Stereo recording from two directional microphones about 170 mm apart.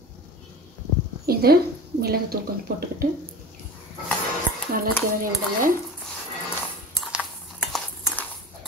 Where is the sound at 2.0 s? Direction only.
65° right (ahead or behind).